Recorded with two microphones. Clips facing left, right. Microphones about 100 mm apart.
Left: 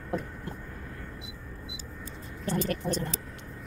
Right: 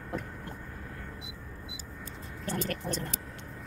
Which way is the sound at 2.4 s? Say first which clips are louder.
Left 4 dB; 15° left (ahead or behind).